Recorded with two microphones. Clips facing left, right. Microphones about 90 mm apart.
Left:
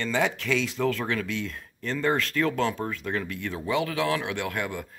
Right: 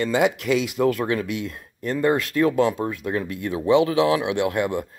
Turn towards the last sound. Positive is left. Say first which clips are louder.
# right 8 dB
turn(degrees=-20)  # may be behind; listen again after turning